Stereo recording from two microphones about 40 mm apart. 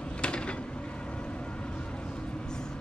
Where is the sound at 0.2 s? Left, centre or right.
Left.